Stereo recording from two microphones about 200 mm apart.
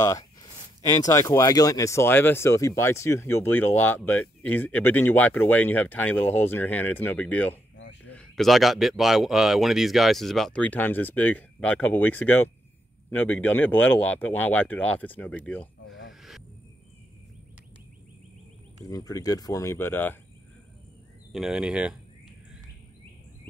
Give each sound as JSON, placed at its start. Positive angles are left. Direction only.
{"t": 0.0, "sound": "speech", "side_deg": 20}
{"t": 16.1, "sound": "a sound", "side_deg": 0}
{"t": 18.9, "sound": "speech", "side_deg": 20}
{"t": 21.3, "sound": "speech", "side_deg": 0}